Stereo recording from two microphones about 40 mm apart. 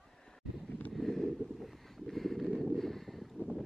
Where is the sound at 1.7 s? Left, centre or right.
Centre.